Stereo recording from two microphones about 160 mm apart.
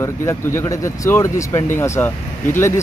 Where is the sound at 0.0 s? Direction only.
15° left (ahead or behind).